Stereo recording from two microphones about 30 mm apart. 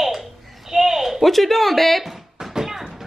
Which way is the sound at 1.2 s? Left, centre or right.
Centre.